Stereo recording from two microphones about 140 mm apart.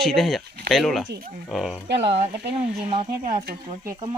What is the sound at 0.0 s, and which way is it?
Speech, centre (ahead or behind).